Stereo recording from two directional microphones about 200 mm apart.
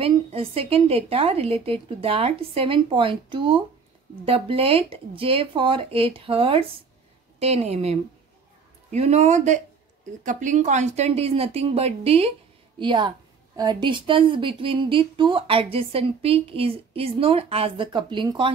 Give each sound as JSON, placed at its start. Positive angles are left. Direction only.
{"t": 0.0, "sound": "a woman's voice", "side_deg": -30}